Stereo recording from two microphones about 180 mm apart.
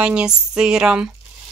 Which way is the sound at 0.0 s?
5° right (ahead or behind).